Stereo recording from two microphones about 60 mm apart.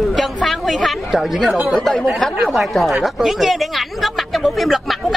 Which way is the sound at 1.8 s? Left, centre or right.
Centre.